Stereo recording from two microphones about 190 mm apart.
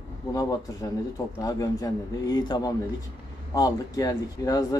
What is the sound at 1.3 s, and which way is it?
A man's voice, 20° left (ahead or behind).